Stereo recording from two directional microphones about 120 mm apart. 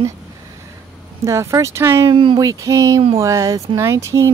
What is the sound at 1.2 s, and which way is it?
Speech, 25° right (ahead or behind).